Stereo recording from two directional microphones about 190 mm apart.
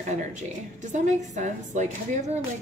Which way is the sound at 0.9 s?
40° right (ahead or behind).